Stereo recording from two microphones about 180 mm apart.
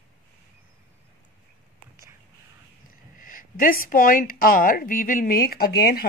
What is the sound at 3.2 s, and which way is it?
A woman's voice, 50° left (ahead or behind).